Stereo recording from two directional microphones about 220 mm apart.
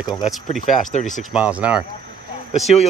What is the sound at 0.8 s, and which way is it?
Speech, 35° left (ahead or behind).